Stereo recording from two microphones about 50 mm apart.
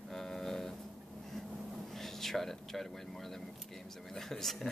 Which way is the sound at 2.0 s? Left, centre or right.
Centre.